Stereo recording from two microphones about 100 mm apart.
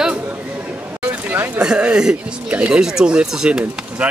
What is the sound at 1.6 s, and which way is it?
Speech, 10° right (ahead or behind).